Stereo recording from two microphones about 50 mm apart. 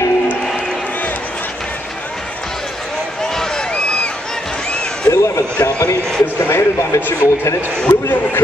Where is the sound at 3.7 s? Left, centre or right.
Left.